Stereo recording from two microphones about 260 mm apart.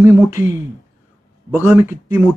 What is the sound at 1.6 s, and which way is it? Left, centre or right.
Speech, centre.